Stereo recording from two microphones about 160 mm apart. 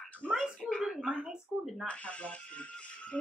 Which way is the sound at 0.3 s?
Centre (ahead or behind).